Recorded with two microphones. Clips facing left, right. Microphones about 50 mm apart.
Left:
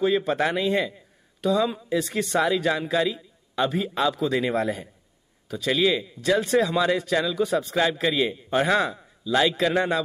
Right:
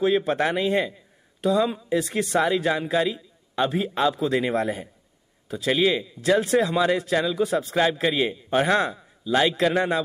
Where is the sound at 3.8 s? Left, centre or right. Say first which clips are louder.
Right 1 dB; right.